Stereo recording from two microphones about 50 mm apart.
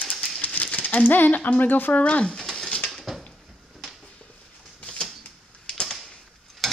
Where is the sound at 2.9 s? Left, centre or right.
Centre.